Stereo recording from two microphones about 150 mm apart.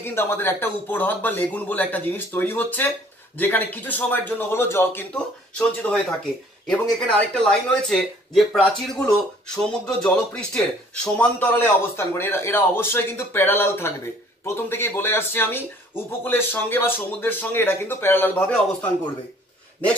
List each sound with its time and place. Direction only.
0.0 s speech: 15° left (ahead or behind)